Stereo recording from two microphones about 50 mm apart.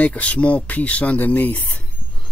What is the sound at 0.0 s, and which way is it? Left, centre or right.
Speech, left.